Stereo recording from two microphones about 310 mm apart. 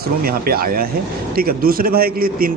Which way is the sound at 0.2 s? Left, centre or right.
Right.